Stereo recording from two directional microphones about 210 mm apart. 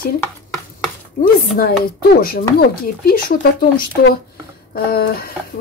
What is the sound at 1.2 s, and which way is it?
Speech, 45° left (ahead or behind).